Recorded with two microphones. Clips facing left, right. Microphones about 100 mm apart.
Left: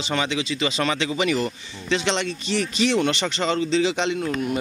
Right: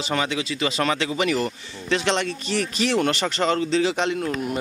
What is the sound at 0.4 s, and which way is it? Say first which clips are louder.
Speech: even; 50° right (ahead or behind).